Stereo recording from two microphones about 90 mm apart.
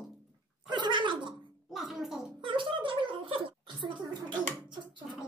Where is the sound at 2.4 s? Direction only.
70° right (ahead or behind).